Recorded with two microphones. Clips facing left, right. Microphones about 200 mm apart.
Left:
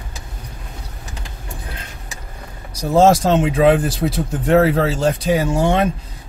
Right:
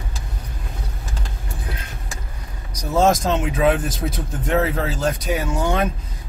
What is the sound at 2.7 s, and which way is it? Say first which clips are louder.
Speech: left 5 dB; 30° left (ahead or behind).